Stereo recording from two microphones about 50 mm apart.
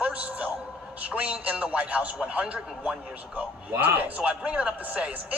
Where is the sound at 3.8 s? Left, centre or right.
Right.